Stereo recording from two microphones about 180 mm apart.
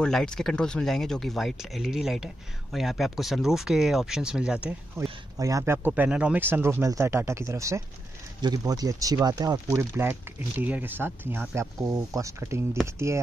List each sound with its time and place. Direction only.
0.0 s speech: 5° left (ahead or behind)
5.4 s speech: 20° right (ahead or behind)